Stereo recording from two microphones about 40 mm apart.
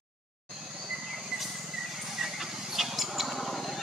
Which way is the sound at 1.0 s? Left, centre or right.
Centre.